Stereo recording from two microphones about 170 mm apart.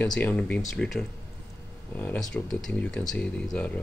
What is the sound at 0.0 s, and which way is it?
Speech, 10° left (ahead or behind).